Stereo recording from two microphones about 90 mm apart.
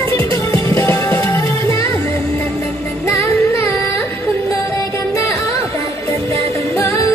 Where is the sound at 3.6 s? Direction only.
25° left (ahead or behind).